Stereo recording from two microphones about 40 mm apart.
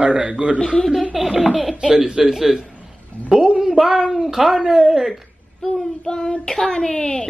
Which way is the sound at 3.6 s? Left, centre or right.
Centre.